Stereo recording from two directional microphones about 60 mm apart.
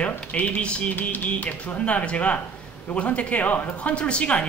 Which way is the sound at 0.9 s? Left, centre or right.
Left.